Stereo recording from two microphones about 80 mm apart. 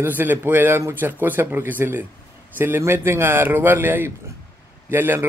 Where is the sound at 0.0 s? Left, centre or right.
Right.